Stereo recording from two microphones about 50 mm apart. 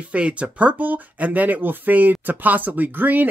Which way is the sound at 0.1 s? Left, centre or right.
Right.